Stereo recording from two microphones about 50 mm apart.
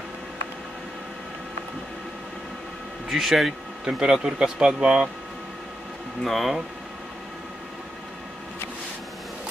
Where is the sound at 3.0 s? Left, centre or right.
Centre.